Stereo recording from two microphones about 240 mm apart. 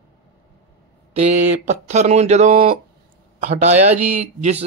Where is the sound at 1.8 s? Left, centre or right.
Right.